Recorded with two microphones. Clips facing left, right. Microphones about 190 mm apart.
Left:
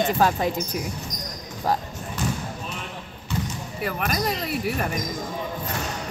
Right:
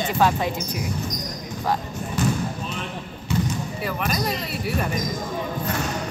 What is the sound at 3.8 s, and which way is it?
Speech, 50° left (ahead or behind).